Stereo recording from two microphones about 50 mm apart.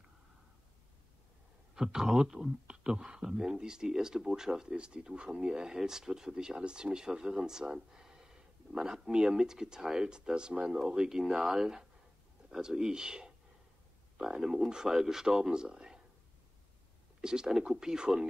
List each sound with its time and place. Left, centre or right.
1.8 s speech: centre
17.2 s speech: centre